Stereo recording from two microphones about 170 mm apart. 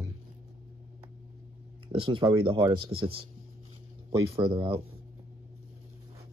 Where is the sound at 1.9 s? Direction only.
30° right (ahead or behind).